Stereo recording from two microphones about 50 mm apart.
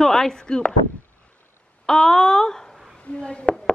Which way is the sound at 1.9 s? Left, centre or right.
Centre.